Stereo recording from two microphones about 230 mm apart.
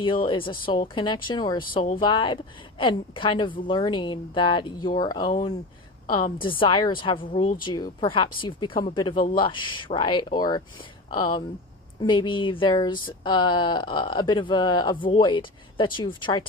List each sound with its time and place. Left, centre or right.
0.0 s speech: left